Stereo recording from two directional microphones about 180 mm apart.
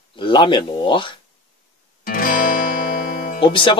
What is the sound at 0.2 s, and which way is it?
Speech, 25° left (ahead or behind).